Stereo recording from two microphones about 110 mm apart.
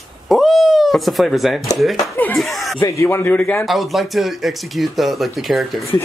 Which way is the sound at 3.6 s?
Centre (ahead or behind).